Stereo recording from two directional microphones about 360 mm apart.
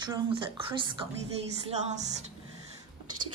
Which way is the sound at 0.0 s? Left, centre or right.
Centre.